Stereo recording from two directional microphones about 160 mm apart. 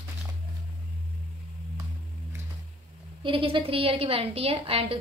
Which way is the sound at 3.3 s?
30° right (ahead or behind).